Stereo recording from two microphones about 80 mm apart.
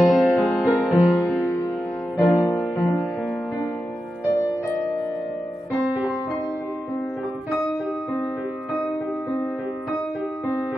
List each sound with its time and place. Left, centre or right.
0.1 s music: centre
2.1 s music: left
2.5 s music: centre
4.3 s music: left